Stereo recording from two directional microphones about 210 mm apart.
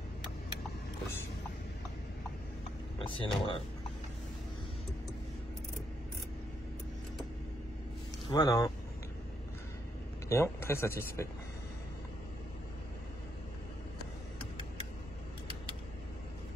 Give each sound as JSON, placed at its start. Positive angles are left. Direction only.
{"t": 3.0, "sound": "speech", "side_deg": 25}
{"t": 8.3, "sound": "speech", "side_deg": 20}
{"t": 10.2, "sound": "speech", "side_deg": 10}